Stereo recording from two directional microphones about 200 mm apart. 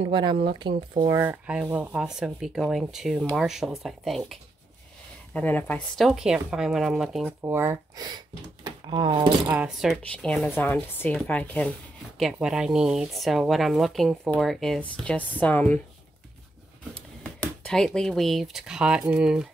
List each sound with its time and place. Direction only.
0.0 s speech: 25° right (ahead or behind); by 7.3 s centre (ahead or behind)
7.4 s speech: 10° right (ahead or behind)
9.5 s speech: 5° right (ahead or behind)
17.2 s speech: 5° left (ahead or behind)